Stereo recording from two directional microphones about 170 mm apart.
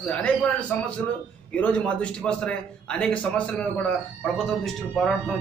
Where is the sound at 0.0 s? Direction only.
5° left (ahead or behind).